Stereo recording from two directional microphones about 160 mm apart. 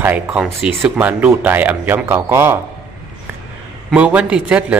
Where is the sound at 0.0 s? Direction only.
10° right (ahead or behind).